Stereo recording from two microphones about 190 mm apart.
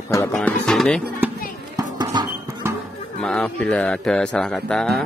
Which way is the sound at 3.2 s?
5° left (ahead or behind).